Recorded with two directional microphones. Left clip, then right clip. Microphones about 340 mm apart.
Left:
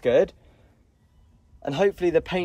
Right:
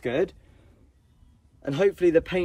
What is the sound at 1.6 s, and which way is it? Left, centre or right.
Speech, centre.